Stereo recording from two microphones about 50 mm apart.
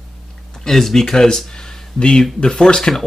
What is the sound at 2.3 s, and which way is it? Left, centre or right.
Speech, centre.